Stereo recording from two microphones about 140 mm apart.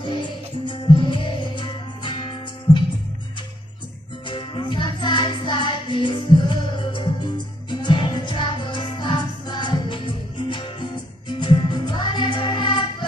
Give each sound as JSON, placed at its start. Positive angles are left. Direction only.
{"t": 0.0, "sound": "music", "side_deg": 35}
{"t": 4.3, "sound": "music", "side_deg": 35}